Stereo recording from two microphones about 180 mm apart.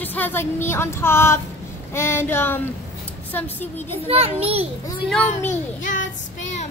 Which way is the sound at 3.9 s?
35° right (ahead or behind).